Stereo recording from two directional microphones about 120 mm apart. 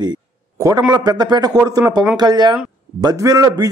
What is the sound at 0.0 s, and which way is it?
A man's voice, 35° right (ahead or behind).